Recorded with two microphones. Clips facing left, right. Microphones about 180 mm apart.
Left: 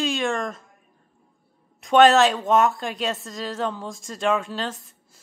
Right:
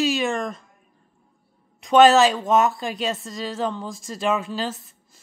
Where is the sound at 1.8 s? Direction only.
Centre (ahead or behind).